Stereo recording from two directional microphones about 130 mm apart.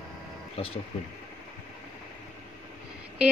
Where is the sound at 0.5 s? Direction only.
45° left (ahead or behind).